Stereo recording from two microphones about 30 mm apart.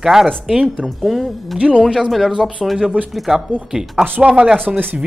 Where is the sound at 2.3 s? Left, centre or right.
Right.